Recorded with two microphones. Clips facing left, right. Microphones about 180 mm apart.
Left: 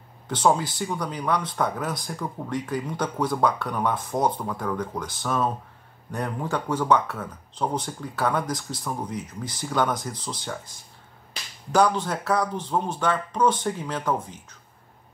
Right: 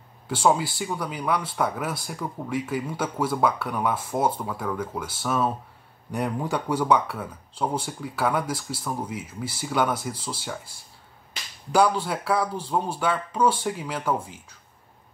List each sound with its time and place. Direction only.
0.3 s speech: 5° right (ahead or behind)
11.7 s speech: 10° right (ahead or behind)